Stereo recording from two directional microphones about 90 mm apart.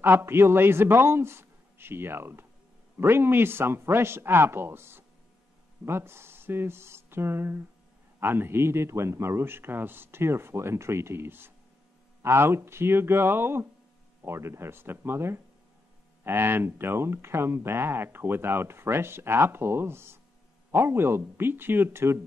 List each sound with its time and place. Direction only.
0.0 s speech: 25° right (ahead or behind)